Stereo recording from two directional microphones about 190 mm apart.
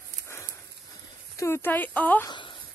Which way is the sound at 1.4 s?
10° left (ahead or behind).